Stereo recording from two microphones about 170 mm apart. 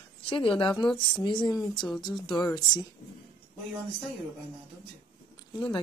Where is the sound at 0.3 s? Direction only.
30° left (ahead or behind).